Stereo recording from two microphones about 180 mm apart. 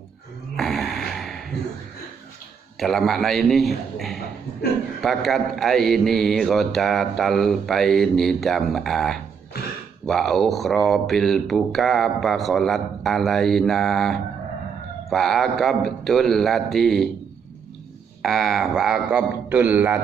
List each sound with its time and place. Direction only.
0.6 s a sound: centre (ahead or behind)
2.8 s speech: centre (ahead or behind)
18.2 s speech: centre (ahead or behind)